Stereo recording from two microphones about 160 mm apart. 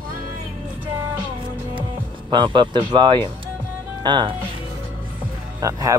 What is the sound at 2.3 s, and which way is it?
Speech, 30° right (ahead or behind).